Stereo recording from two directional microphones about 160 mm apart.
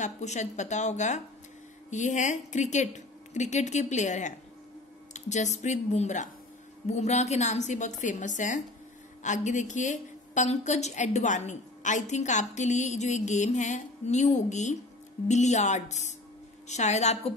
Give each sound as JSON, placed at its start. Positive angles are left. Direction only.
{"t": 0.0, "sound": "a woman's voice", "side_deg": 45}